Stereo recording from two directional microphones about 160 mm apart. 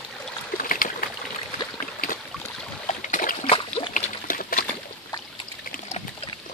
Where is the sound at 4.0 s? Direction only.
60° left (ahead or behind).